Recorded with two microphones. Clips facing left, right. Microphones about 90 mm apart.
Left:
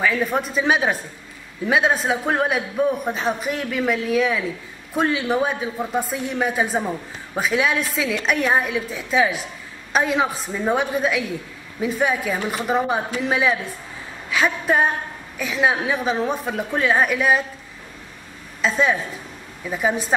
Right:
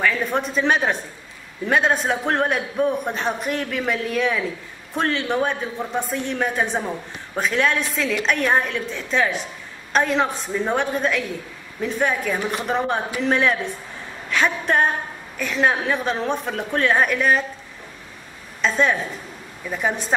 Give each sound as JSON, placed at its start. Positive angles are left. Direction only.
{"t": 0.0, "sound": "a man's voice", "side_deg": 5}
{"t": 14.3, "sound": "a sound", "side_deg": 5}
{"t": 15.3, "sound": "a man's voice", "side_deg": 5}
{"t": 18.6, "sound": "a man's voice", "side_deg": 0}